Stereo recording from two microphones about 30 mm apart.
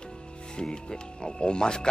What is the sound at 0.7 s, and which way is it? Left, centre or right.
Speech, left.